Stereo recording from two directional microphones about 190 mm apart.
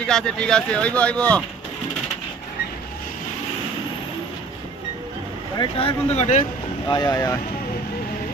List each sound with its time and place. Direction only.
0.0 s speech: 5° left (ahead or behind)
5.6 s speech: 30° left (ahead or behind)
6.9 s speech: 20° left (ahead or behind)